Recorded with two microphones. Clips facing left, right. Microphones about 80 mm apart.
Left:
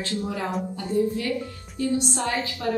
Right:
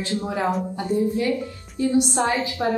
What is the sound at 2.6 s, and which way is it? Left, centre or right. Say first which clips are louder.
Speech: right 4 dB; right.